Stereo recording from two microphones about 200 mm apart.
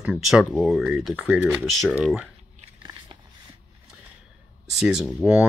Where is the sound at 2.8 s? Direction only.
25° right (ahead or behind).